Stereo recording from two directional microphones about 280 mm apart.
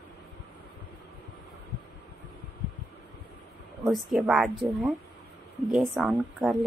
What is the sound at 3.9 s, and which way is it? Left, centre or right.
Speech, centre.